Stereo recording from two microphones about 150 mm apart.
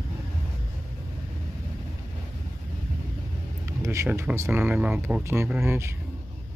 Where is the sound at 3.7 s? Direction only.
20° right (ahead or behind).